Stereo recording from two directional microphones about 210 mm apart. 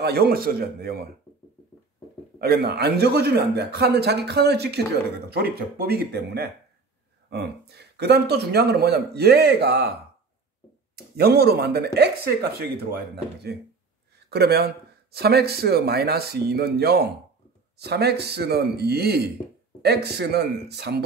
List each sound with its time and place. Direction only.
0.0 s speech: 50° right (ahead or behind)
2.3 s speech: 45° right (ahead or behind)
11.1 s speech: 50° right (ahead or behind)